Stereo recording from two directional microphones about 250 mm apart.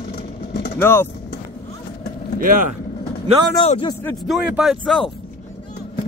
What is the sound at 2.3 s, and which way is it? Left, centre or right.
Speech, right.